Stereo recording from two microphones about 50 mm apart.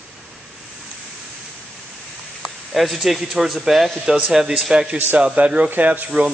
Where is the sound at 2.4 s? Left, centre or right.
Centre.